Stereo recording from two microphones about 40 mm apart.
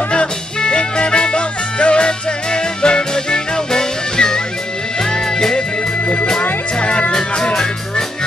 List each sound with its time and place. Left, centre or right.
0.6 s music: left
6.8 s music: left